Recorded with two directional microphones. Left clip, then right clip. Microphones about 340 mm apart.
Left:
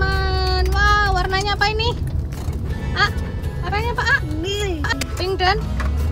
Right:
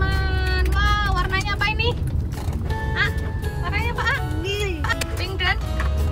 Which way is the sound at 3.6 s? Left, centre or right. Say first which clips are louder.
Left 3 dB; centre.